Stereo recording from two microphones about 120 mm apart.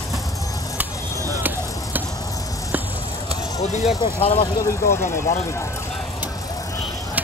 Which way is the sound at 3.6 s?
65° left (ahead or behind).